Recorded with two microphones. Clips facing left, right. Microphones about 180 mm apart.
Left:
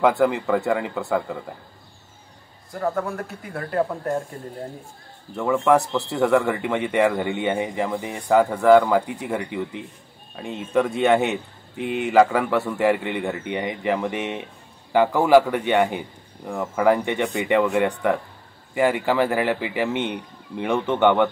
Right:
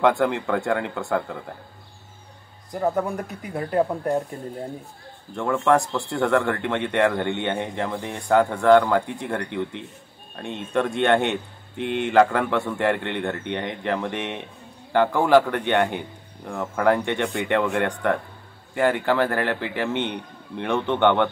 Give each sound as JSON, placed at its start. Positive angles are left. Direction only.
{"t": 0.0, "sound": "a man's voice", "side_deg": 5}
{"t": 2.7, "sound": "speech", "side_deg": -20}
{"t": 5.3, "sound": "a man's voice", "side_deg": 5}